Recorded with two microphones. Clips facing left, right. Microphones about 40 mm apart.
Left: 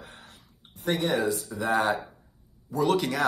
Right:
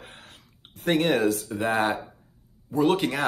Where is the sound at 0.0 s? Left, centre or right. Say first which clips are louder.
Right 1 dB; right.